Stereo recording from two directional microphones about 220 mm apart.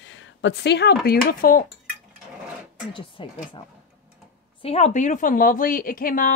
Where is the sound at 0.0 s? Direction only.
60° left (ahead or behind).